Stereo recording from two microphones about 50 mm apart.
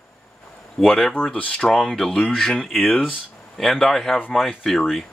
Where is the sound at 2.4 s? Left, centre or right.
Centre.